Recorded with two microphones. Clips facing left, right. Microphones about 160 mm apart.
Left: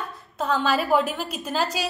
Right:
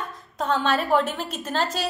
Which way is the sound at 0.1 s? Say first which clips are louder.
Even; 5° left (ahead or behind).